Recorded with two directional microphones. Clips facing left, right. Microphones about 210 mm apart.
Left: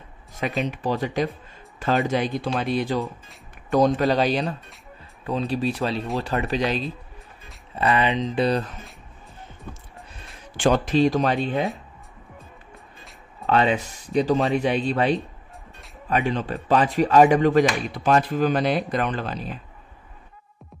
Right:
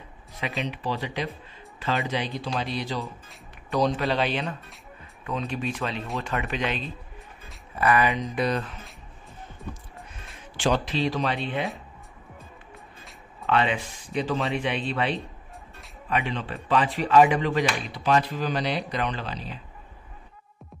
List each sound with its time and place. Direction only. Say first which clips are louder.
0.7 s speech: left 5 dB; 45° left (ahead or behind)
2.4 s speech: left 6 dB; 55° left (ahead or behind); by 6.9 s 35° left (ahead or behind)
7.7 s speech: left 1 dB; 25° left (ahead or behind)
8.4 s speech: left 5 dB; 35° left (ahead or behind)
10.5 s speech: left 5 dB; 45° left (ahead or behind)
13.5 s speech: left 4 dB; 40° left (ahead or behind)